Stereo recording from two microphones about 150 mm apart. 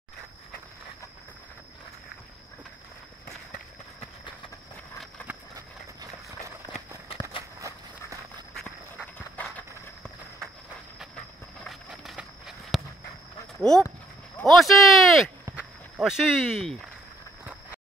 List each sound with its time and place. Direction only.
7.1 s walk: 35° left (ahead or behind)
9.4 s a sound: 10° left (ahead or behind)
11.6 s walk: centre (ahead or behind)
13.6 s speech: 5° left (ahead or behind)